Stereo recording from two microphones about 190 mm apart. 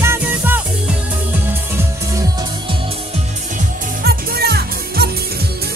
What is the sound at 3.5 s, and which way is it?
Music, 55° right (ahead or behind).